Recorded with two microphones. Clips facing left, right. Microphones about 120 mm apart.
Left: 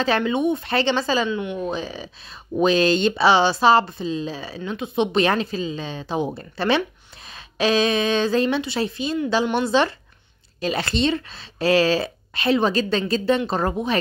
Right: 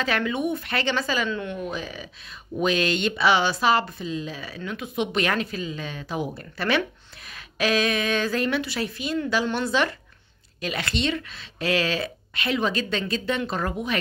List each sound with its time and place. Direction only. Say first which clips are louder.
0.0 s speech: left 5 dB; 30° left (ahead or behind)
1.3 s a woman's voice: left 4 dB; 15° left (ahead or behind)
1.6 s speech: left 5 dB; 30° left (ahead or behind)